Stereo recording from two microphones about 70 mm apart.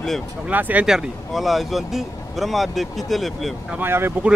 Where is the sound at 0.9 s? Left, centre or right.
Centre.